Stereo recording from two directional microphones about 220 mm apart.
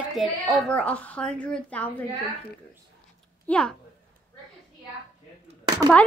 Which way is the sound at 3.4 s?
5° left (ahead or behind).